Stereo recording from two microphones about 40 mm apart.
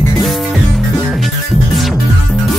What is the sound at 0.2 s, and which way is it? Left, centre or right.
Music, centre.